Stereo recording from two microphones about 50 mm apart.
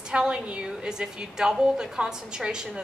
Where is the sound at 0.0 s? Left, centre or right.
Centre.